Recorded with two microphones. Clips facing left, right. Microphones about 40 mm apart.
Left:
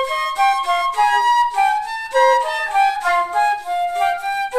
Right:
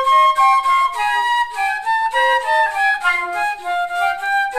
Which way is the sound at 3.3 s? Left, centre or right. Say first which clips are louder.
Left 2 dB; right.